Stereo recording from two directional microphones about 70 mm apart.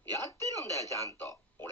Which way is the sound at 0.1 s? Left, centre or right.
Left.